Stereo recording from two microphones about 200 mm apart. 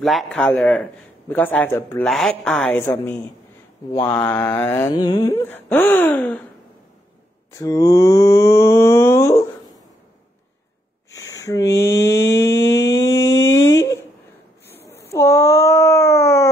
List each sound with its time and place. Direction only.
0.0 s speech: centre (ahead or behind)
1.3 s mantra: 10° left (ahead or behind)
4.8 s mantra: 20° left (ahead or behind)
7.5 s mantra: 15° left (ahead or behind)
11.1 s a sound: 15° left (ahead or behind)
15.1 s a sound: 15° left (ahead or behind)